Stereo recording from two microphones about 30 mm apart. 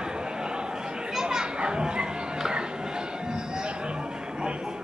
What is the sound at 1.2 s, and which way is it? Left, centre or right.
Children playing, right.